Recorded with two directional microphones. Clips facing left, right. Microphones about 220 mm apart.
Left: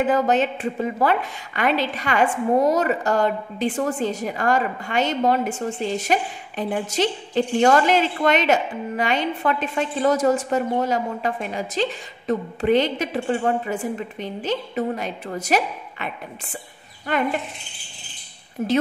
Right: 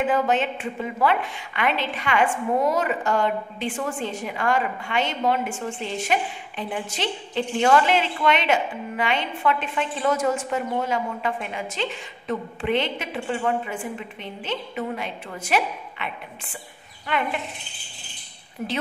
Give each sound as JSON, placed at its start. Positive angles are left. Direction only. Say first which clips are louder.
{"t": 0.0, "sound": "a woman's voice", "louder": "left 3 dB", "side_deg": 40}
{"t": 18.6, "sound": "a woman's voice", "louder": "left 7 dB", "side_deg": 45}